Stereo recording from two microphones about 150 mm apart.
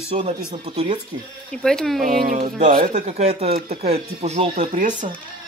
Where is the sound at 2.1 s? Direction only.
70° right (ahead or behind).